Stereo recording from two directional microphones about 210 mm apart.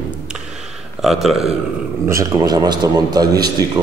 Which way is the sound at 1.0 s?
Centre (ahead or behind).